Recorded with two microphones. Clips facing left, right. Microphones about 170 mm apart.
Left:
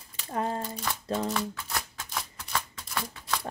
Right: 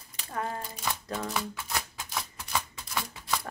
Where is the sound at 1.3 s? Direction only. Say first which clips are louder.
Left 1 dB; 5° right (ahead or behind).